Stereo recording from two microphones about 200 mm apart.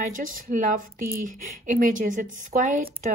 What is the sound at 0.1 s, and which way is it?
A woman's voice, 40° right (ahead or behind).